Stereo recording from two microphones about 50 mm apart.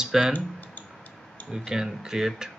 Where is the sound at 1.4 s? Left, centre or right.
Centre.